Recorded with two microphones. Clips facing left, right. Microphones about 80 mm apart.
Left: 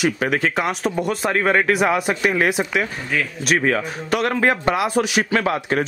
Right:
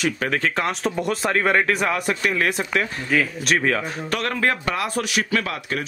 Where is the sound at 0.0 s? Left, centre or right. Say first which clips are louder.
Left 3 dB; centre.